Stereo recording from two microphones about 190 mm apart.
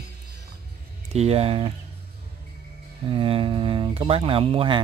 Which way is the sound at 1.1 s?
35° right (ahead or behind).